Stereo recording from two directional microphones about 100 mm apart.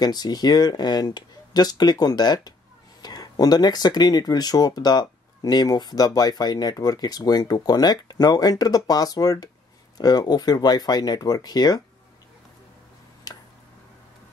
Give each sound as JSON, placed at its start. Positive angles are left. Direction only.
{"t": 0.0, "sound": "speech", "side_deg": 40}
{"t": 13.3, "sound": "tick", "side_deg": 40}